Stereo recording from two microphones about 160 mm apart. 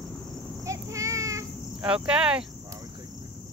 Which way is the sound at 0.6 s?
20° right (ahead or behind).